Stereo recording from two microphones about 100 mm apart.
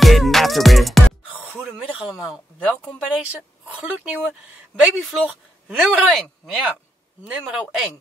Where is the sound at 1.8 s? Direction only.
10° right (ahead or behind).